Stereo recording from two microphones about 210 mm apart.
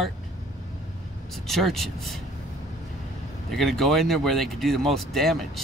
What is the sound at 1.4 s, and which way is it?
Speech, centre (ahead or behind).